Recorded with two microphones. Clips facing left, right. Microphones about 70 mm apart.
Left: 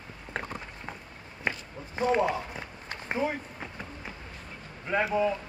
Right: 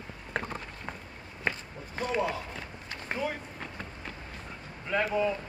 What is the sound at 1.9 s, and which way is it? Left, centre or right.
Run, left.